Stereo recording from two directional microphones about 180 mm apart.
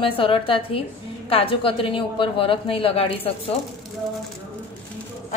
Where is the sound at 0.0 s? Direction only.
30° left (ahead or behind).